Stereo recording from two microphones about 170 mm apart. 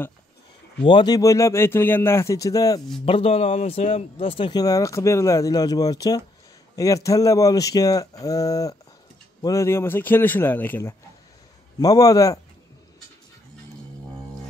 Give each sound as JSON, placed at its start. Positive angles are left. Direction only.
{"t": 0.8, "sound": "speech", "side_deg": 25}
{"t": 3.1, "sound": "speech", "side_deg": 35}